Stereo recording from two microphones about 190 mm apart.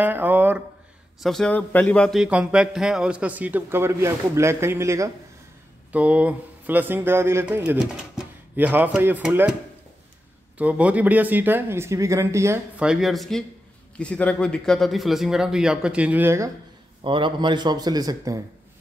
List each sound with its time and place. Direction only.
0.0 s a sound: 10° right (ahead or behind)
1.2 s a man's voice: centre (ahead or behind)
10.6 s speech: 5° right (ahead or behind)
12.8 s a man's voice: centre (ahead or behind)
17.0 s a man's voice: 25° right (ahead or behind)